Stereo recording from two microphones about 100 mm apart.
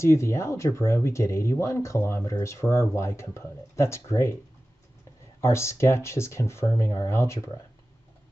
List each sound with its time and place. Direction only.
0.0 s speech: 30° left (ahead or behind)
5.4 s speech: 30° left (ahead or behind)